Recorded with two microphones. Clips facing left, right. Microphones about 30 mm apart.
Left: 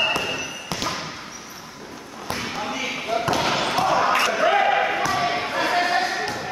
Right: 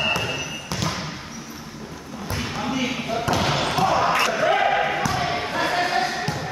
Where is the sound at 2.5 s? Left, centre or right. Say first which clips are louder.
Right 2 dB; centre.